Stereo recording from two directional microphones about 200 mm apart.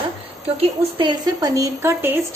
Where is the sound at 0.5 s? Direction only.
25° right (ahead or behind).